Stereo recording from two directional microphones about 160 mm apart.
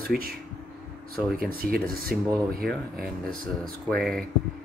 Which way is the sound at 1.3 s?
65° right (ahead or behind).